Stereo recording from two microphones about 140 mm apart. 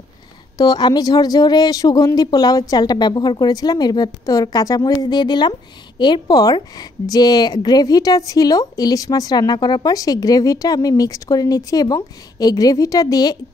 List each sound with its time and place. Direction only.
0.6 s a woman's voice: 30° left (ahead or behind)